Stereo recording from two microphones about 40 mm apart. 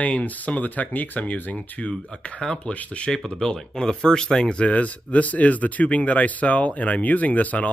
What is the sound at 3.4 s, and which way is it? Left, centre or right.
Speech, centre.